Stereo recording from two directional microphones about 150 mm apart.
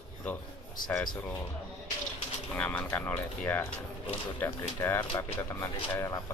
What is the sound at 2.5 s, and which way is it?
Speech, 10° left (ahead or behind).